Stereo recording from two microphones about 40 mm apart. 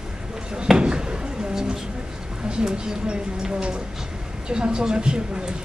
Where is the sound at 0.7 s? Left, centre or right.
Right.